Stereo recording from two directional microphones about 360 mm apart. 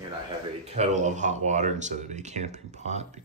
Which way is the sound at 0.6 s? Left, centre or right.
Centre.